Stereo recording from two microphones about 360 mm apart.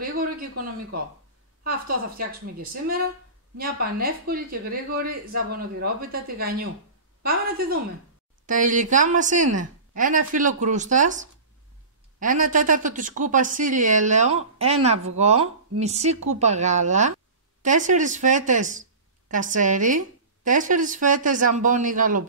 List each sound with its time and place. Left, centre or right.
0.0 s a woman's voice: right